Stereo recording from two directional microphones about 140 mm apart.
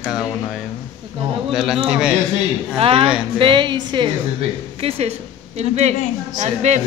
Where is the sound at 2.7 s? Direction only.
40° right (ahead or behind).